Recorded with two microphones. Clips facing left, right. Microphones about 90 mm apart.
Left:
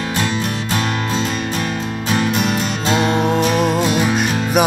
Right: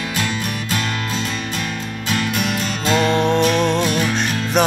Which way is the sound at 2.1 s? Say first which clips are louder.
Left 3 dB; 20° left (ahead or behind).